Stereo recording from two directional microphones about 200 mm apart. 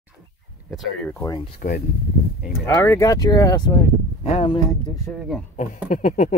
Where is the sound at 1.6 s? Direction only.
40° left (ahead or behind).